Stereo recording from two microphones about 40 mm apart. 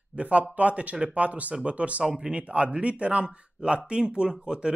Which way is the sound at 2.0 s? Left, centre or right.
Centre.